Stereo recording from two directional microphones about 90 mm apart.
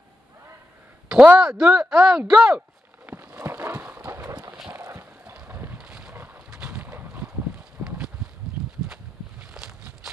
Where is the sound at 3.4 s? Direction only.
30° right (ahead or behind).